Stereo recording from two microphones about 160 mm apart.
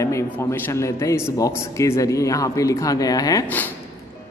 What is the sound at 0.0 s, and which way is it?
A woman's voice, 20° left (ahead or behind).